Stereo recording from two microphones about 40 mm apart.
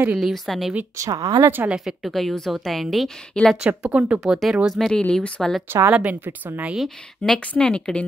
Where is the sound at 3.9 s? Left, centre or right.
Right.